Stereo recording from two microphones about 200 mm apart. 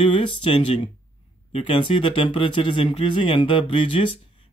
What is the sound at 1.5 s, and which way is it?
Speech, 25° left (ahead or behind).